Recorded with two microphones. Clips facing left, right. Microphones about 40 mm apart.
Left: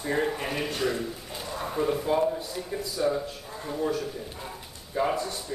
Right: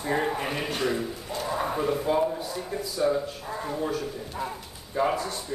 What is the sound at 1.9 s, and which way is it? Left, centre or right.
A woman's voice, centre.